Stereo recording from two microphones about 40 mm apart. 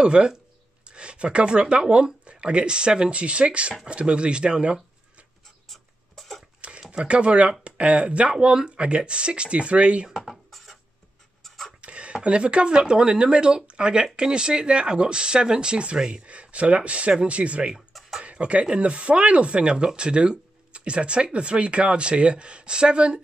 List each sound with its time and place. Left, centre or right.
0.0 s speech: right
5.7 s writing: centre
6.6 s a sound: right
7.1 s speech: right
10.2 s writing: centre
11.4 s vehicle: centre
11.8 s speech: right